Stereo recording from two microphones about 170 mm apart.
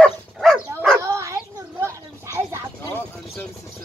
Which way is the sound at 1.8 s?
15° right (ahead or behind).